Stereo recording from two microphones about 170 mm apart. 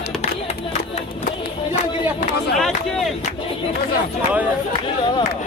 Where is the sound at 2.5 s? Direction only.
Centre (ahead or behind).